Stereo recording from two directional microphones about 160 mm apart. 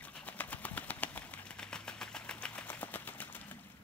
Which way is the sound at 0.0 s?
10° left (ahead or behind).